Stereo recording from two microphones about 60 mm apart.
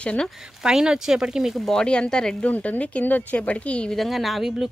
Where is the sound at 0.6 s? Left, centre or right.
Centre.